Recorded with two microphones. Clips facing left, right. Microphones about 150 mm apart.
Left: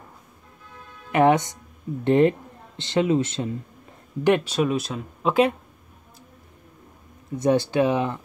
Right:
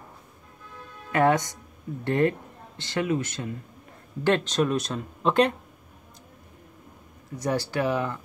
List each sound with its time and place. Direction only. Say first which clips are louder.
1.1 s speech: left 3 dB; 20° left (ahead or behind)
4.2 s speech: left 3 dB; 10° left (ahead or behind)
7.3 s speech: left 7 dB; 20° left (ahead or behind)